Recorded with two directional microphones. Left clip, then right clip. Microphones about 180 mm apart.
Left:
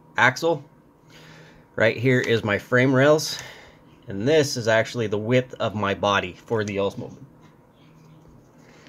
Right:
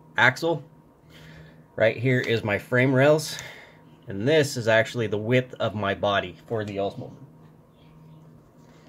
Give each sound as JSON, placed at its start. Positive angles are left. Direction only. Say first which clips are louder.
{"t": 0.1, "sound": "speech", "louder": "left 1 dB", "side_deg": 0}
{"t": 1.3, "sound": "speech", "louder": "left 4 dB", "side_deg": 15}
{"t": 6.5, "sound": "speech", "louder": "left 4 dB", "side_deg": 25}